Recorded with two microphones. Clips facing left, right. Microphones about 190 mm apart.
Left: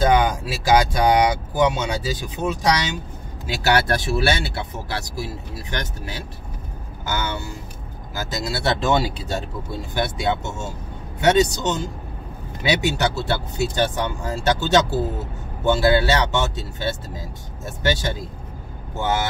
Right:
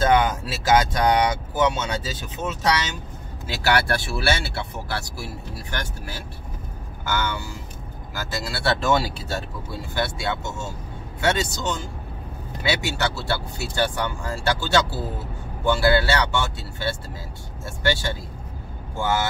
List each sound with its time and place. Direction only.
0.0 s speech: 15° left (ahead or behind)